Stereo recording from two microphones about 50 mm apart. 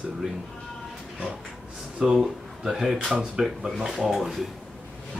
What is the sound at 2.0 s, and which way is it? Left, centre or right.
Speech, centre.